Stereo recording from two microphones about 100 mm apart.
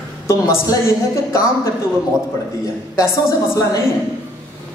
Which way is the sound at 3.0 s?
30° left (ahead or behind).